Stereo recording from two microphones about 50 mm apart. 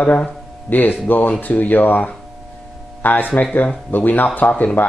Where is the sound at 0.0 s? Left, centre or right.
Left.